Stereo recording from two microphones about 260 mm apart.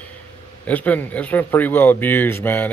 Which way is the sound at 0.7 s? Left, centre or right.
Centre.